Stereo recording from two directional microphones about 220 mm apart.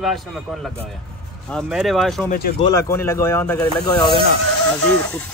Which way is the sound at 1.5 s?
Centre (ahead or behind).